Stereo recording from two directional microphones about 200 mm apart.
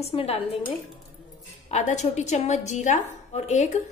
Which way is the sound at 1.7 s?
35° left (ahead or behind).